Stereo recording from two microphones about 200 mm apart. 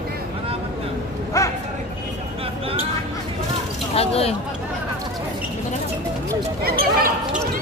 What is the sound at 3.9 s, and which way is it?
Speech, 30° left (ahead or behind).